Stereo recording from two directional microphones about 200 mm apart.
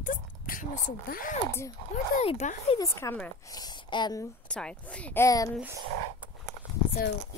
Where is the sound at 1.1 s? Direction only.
45° left (ahead or behind).